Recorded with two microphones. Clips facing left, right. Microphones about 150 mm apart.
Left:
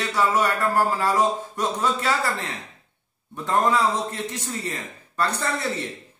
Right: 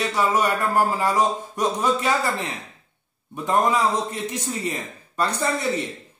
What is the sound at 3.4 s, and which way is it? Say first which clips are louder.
Speech: right 1 dB; 15° right (ahead or behind).